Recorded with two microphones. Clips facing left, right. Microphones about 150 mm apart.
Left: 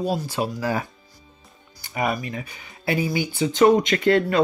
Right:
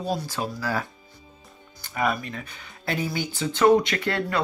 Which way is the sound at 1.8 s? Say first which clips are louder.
Left 1 dB; 15° left (ahead or behind).